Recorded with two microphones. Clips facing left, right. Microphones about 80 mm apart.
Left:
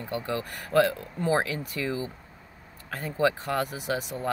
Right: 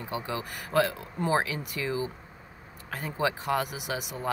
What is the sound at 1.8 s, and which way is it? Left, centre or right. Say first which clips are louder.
Speech: right 1 dB; centre.